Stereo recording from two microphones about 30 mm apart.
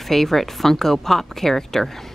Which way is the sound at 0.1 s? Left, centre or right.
Centre.